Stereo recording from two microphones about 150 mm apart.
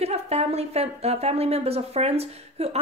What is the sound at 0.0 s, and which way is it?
Speech, 45° right (ahead or behind).